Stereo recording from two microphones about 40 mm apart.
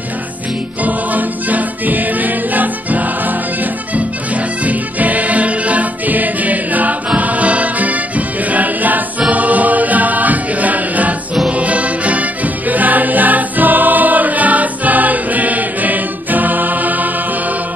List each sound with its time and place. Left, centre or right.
0.8 s music: right